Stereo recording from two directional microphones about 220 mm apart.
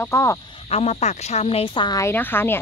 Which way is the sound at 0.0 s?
15° left (ahead or behind).